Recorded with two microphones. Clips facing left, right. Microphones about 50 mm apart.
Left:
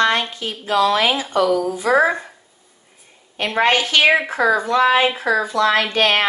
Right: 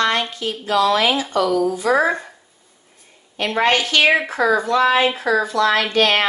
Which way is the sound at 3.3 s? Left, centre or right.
Left.